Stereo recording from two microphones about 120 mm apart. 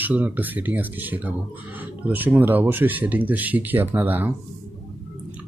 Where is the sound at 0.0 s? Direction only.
15° right (ahead or behind).